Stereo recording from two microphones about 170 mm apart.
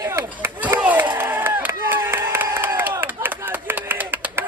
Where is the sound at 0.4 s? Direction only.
10° right (ahead or behind).